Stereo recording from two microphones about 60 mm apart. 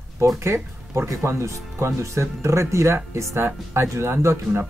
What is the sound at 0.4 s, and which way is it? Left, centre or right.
Speech, right.